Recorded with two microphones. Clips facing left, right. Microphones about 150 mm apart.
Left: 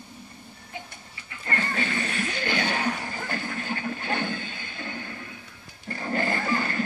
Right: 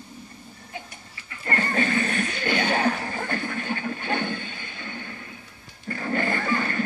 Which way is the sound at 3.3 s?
35° left (ahead or behind).